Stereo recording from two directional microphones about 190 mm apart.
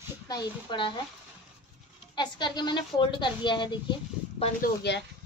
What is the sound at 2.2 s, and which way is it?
Speech, 25° left (ahead or behind).